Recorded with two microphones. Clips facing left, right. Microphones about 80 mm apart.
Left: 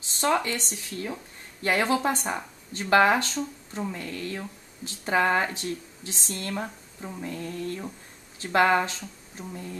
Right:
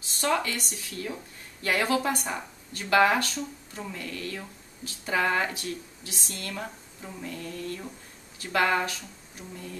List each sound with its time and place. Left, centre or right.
0.2 s speech: left
6.6 s speech: centre